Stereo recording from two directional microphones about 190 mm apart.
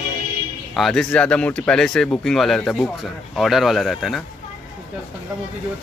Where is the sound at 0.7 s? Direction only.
Centre (ahead or behind).